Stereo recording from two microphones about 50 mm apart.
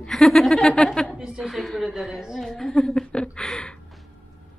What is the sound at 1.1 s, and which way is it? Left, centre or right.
Speech, centre.